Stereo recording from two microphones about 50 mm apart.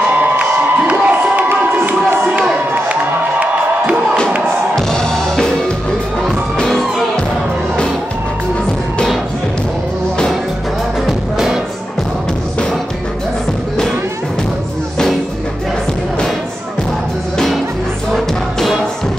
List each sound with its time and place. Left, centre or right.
0.1 s a sound: right
1.9 s music: right
6.2 s music: centre
11.1 s music: centre
18.1 s music: centre